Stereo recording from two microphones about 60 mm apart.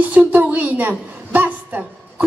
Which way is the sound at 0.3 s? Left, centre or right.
Right.